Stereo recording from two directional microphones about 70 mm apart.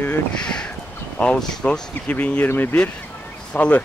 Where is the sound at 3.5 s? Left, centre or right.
Centre.